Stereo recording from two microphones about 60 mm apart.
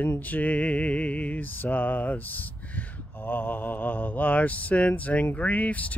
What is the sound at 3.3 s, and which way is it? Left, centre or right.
Speech, left.